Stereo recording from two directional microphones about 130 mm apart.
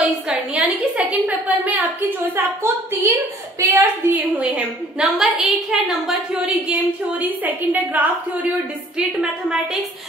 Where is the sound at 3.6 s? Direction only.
20° right (ahead or behind).